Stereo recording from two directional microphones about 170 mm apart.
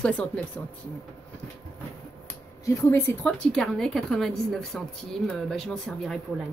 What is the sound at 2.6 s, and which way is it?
Speech, 15° left (ahead or behind).